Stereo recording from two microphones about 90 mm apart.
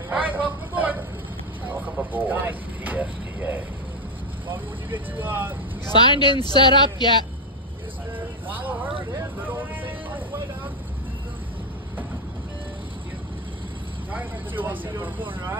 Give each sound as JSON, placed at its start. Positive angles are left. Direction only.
{"t": 0.1, "sound": "vehicle", "side_deg": -15}
{"t": 4.9, "sound": "speech", "side_deg": -20}
{"t": 5.9, "sound": "speech", "side_deg": 55}
{"t": 8.5, "sound": "vehicle", "side_deg": -20}
{"t": 14.1, "sound": "vehicle", "side_deg": -20}